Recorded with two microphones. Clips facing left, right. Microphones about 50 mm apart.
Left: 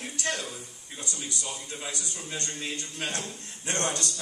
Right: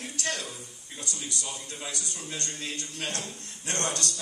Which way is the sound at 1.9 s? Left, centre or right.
Left.